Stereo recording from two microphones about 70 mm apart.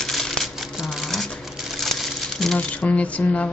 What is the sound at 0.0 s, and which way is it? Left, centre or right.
Typewriter, centre.